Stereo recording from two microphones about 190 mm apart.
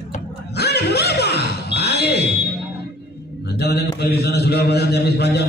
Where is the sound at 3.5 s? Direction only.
60° left (ahead or behind).